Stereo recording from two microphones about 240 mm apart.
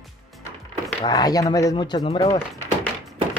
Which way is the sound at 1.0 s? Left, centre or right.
Centre.